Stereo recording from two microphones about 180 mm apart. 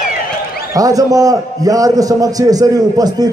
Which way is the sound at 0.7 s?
20° right (ahead or behind).